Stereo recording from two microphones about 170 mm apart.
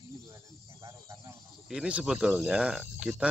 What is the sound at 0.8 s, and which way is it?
Speech, 15° right (ahead or behind).